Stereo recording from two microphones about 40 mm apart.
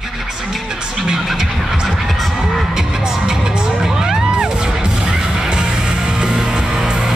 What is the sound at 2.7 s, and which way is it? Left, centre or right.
Music, centre.